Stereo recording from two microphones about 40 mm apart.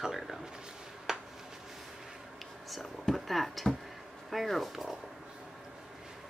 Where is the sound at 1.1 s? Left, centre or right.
Centre.